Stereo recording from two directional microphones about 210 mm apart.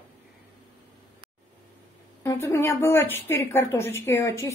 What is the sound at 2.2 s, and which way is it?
A woman's voice, 15° left (ahead or behind).